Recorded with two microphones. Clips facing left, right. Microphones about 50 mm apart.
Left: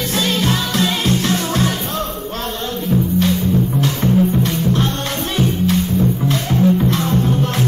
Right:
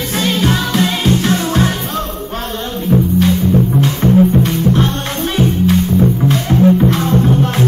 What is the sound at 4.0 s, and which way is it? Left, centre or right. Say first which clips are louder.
Music: right 5 dB; centre.